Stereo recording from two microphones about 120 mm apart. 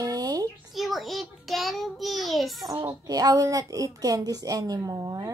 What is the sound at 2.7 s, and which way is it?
A woman's voice, 35° right (ahead or behind).